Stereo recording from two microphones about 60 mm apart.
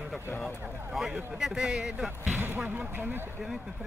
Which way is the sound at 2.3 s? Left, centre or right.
Right.